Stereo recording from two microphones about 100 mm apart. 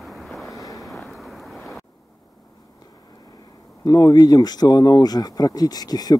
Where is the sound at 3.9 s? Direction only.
40° left (ahead or behind).